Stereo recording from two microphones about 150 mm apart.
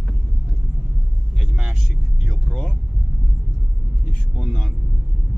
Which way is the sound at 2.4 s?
Centre (ahead or behind).